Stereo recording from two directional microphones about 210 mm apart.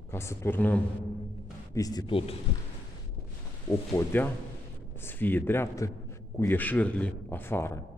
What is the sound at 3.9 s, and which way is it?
A man's voice, 10° left (ahead or behind).